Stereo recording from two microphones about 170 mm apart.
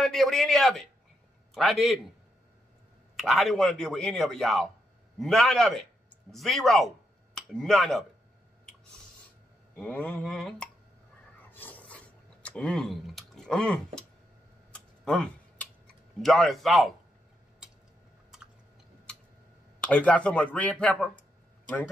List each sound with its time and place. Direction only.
0.0 s a man's voice: centre (ahead or behind)
3.2 s speech: centre (ahead or behind)
9.8 s speech: 10° left (ahead or behind)
11.5 s filing: 10° left (ahead or behind)
12.4 s a sound: 5° left (ahead or behind)
15.0 s typing: 5° left (ahead or behind)
16.2 s speech: centre (ahead or behind)
19.9 s speech: 5° left (ahead or behind)